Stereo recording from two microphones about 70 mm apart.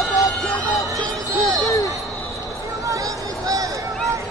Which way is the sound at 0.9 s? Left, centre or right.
Right.